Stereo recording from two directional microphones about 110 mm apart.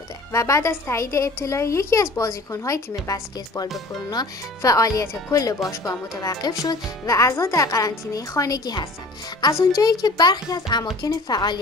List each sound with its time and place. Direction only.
0.3 s speech: 25° left (ahead or behind)